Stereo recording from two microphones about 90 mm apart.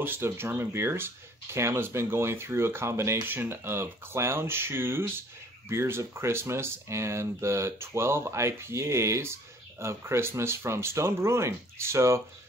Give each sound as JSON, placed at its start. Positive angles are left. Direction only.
{"t": 0.0, "sound": "speech", "side_deg": -25}